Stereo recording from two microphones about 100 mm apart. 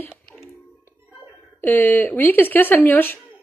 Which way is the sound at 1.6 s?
20° left (ahead or behind).